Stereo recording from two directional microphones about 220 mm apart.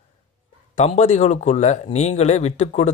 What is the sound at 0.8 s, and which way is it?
Speech, 30° left (ahead or behind).